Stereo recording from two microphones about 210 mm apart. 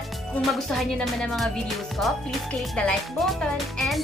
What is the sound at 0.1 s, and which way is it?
Speech, centre (ahead or behind).